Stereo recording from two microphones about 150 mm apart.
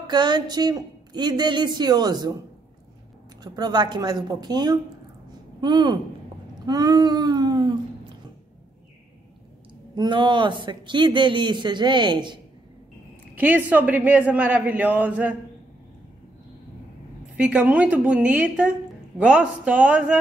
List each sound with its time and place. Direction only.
0.0 s speech: 30° right (ahead or behind)
3.5 s speech: 30° right (ahead or behind)
6.6 s a sound: 25° right (ahead or behind)
9.9 s a man's voice: 30° right (ahead or behind)
13.4 s a woman's voice: 10° right (ahead or behind)
17.4 s a woman's voice: 5° right (ahead or behind)